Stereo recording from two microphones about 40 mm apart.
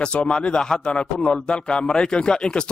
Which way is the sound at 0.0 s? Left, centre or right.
Left.